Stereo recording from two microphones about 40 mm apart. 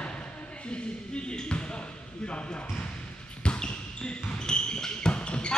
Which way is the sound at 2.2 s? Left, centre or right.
Left.